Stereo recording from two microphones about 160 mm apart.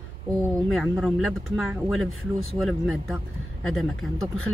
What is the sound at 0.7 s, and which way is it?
Speech, centre (ahead or behind).